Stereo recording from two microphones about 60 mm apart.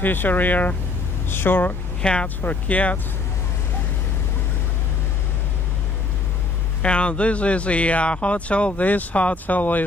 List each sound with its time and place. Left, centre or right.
0.0 s speech: left
2.0 s speech: centre
2.2 s speech: left
6.8 s speech: centre